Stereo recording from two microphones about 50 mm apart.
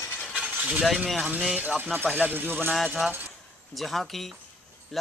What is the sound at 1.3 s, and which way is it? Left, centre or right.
Speech, centre.